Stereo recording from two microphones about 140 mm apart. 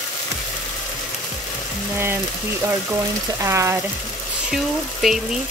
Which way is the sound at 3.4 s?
20° right (ahead or behind).